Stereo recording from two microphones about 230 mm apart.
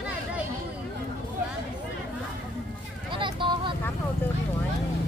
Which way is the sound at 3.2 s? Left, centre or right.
Right.